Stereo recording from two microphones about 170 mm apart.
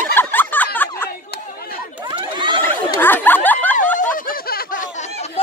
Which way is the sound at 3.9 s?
50° left (ahead or behind).